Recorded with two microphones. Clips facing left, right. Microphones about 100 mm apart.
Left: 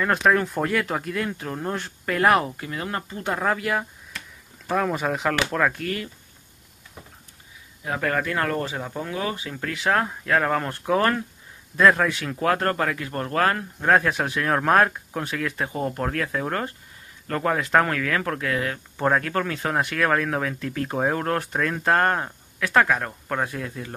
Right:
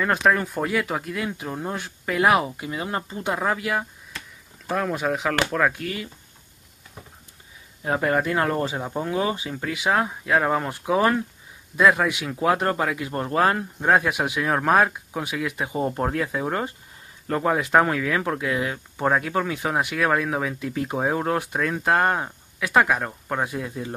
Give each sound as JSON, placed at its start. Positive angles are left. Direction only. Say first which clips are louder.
{"t": 0.0, "sound": "speech", "louder": "even", "side_deg": 0}
{"t": 3.3, "sound": "speech", "louder": "left 1 dB", "side_deg": 0}
{"t": 8.0, "sound": "speech", "louder": "right 2 dB", "side_deg": -20}